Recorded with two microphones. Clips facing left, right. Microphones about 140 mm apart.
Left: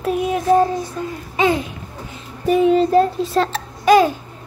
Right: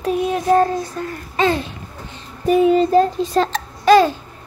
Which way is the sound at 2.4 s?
Centre (ahead or behind).